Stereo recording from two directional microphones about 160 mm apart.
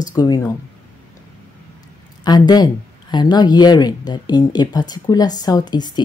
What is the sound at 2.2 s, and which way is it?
Speech, 25° left (ahead or behind).